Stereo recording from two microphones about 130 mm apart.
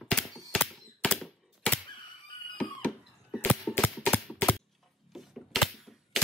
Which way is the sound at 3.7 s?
15° left (ahead or behind).